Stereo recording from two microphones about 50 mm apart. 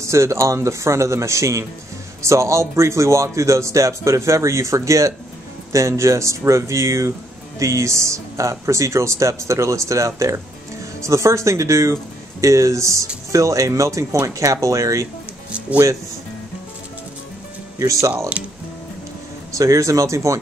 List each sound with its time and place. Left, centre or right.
0.0 s speech: right
18.4 s speech: right
19.5 s speech: right